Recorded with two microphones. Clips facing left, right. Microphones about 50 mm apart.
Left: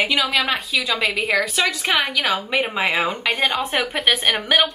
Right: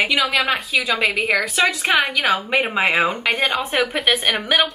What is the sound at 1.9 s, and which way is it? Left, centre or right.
Speech, centre.